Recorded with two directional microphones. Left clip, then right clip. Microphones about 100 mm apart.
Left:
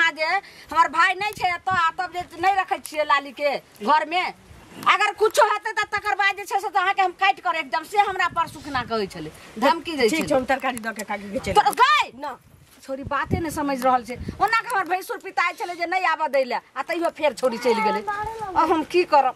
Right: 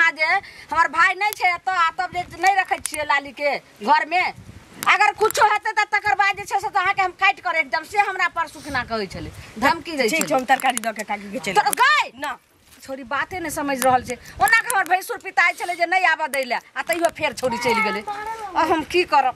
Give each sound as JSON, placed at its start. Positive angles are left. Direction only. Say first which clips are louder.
{"t": 0.0, "sound": "a woman's voice", "louder": "right 3 dB", "side_deg": 0}
{"t": 10.0, "sound": "speech", "louder": "right 1 dB", "side_deg": -10}
{"t": 11.5, "sound": "a woman's voice", "louder": "even", "side_deg": 0}